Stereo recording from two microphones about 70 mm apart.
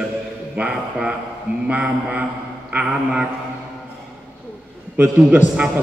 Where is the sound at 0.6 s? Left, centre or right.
Centre.